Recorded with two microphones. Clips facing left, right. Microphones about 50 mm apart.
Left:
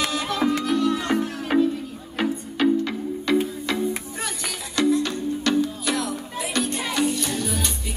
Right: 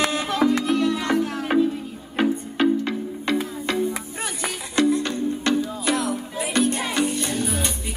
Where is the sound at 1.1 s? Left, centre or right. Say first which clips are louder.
Right 3 dB; centre.